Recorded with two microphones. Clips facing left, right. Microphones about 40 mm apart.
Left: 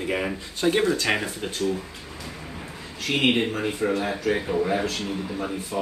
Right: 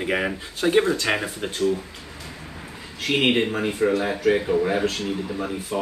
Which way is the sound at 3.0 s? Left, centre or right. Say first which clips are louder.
Right 2 dB; right.